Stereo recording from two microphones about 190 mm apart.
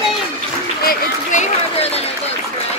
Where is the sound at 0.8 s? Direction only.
45° left (ahead or behind).